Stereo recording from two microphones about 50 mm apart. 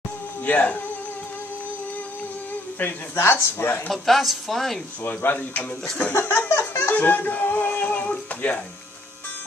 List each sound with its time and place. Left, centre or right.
0.5 s speech: left
2.8 s speech: left
3.2 s speech: left
3.9 s a woman's voice: centre
5.0 s speech: left
6.3 s a sound: left
7.0 s a sound: left